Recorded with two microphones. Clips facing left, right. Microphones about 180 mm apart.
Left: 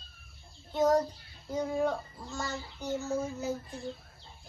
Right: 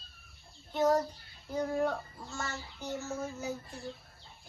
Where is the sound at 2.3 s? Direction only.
15° left (ahead or behind).